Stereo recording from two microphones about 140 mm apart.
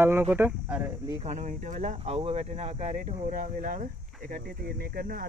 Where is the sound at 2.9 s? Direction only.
70° right (ahead or behind).